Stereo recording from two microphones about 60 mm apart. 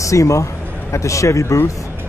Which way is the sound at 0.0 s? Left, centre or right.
Left.